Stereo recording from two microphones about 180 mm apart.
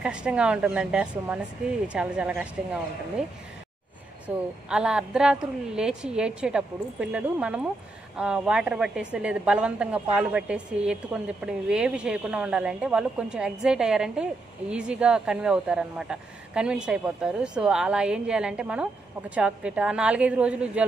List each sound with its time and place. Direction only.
0.0 s a woman's voice: 5° right (ahead or behind)
4.3 s a woman's voice: 5° right (ahead or behind)